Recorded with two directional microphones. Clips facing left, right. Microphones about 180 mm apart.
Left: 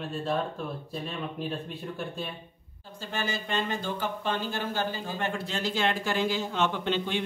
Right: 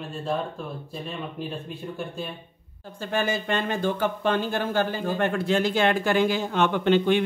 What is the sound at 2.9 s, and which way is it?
Speech, 55° right (ahead or behind).